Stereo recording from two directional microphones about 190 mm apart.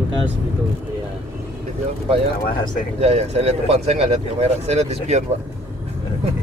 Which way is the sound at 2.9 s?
35° right (ahead or behind).